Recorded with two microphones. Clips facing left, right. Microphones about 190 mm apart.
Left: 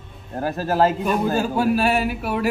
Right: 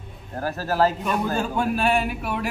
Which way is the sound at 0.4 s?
20° left (ahead or behind).